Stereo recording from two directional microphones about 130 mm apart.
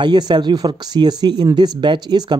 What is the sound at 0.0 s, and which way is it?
Speech, 35° right (ahead or behind).